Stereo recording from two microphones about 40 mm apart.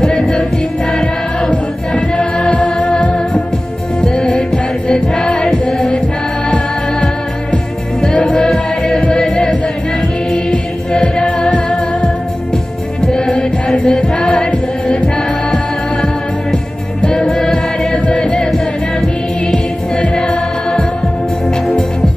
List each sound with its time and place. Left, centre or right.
0.2 s music: centre
1.5 s music: left
4.0 s music: centre
7.5 s music: left
11.1 s music: left
13.1 s music: left
14.1 s music: left
17.0 s music: left
17.9 s music: left